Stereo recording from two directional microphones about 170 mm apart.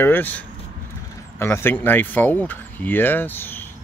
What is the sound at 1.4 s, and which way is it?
Speech, 15° left (ahead or behind).